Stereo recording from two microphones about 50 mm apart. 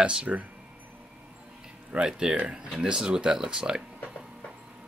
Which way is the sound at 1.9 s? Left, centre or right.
Centre.